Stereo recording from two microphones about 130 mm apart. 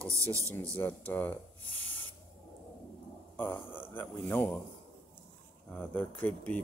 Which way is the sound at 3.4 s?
15° left (ahead or behind).